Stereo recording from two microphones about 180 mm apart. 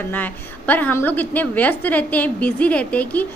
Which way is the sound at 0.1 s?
10° left (ahead or behind).